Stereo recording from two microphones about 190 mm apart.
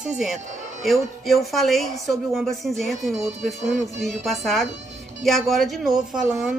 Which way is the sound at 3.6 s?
40° right (ahead or behind).